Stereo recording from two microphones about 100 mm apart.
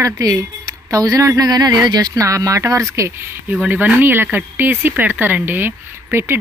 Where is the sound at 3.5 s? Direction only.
15° right (ahead or behind).